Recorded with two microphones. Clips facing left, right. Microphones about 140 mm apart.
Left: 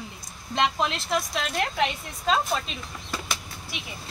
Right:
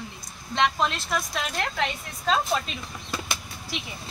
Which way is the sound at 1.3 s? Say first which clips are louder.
Left 2 dB; 5° left (ahead or behind).